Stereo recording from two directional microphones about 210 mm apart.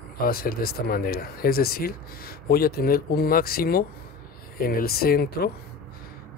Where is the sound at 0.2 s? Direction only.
45° left (ahead or behind).